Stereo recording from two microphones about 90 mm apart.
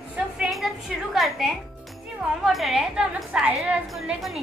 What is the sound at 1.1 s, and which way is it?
Speech, centre (ahead or behind).